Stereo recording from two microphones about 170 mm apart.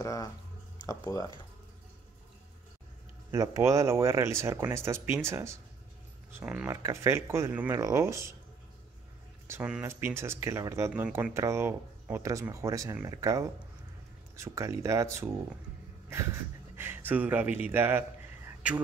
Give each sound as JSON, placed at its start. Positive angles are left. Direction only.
{"t": 0.0, "sound": "speech", "side_deg": 20}
{"t": 3.3, "sound": "speech", "side_deg": -20}
{"t": 9.5, "sound": "speech", "side_deg": -5}